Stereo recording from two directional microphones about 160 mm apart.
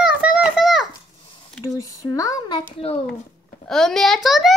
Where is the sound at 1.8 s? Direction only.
20° left (ahead or behind).